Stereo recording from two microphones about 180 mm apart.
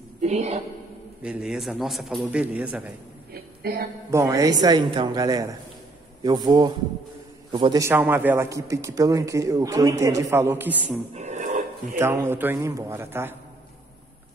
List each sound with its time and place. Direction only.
0.2 s a woman's voice: 40° right (ahead or behind)
1.2 s a man's voice: 5° right (ahead or behind)
3.7 s speech: 60° right (ahead or behind)
4.1 s a man's voice: 20° right (ahead or behind)
7.8 s a man's voice: 10° right (ahead or behind)
11.1 s a sound: 40° right (ahead or behind)
12.0 s a man's voice: 15° right (ahead or behind)